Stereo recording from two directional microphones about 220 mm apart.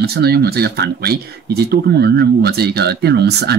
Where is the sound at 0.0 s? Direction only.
45° right (ahead or behind).